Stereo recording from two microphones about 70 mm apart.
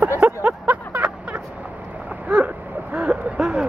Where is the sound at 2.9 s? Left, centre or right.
Centre.